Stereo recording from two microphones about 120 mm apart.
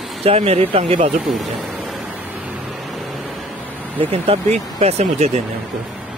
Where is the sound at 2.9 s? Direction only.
Centre (ahead or behind).